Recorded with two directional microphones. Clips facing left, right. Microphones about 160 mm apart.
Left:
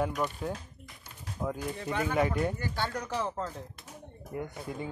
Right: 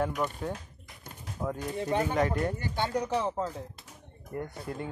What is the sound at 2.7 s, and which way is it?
Speech, 15° right (ahead or behind).